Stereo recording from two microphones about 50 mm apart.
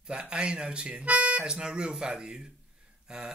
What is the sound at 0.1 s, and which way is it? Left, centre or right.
Speech, centre.